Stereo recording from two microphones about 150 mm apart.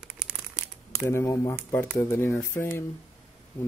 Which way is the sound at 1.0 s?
20° left (ahead or behind).